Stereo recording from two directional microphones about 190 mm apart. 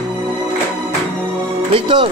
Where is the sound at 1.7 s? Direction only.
25° right (ahead or behind).